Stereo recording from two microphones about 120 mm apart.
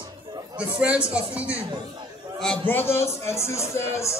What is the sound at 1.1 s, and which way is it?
Speech, 10° right (ahead or behind).